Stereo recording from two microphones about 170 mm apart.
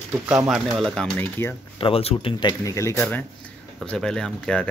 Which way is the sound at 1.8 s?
35° left (ahead or behind).